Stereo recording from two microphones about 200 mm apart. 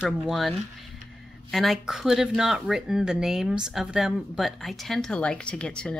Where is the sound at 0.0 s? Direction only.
Centre (ahead or behind).